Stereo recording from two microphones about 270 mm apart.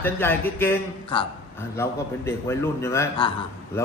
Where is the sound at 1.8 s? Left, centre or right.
Centre.